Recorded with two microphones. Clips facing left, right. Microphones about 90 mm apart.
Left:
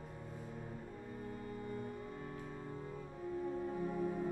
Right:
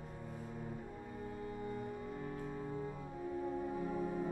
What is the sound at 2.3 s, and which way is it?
Music, 5° right (ahead or behind).